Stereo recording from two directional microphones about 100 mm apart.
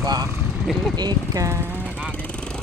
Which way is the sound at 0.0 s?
40° right (ahead or behind).